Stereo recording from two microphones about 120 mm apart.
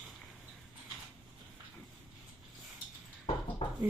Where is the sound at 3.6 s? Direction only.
65° left (ahead or behind).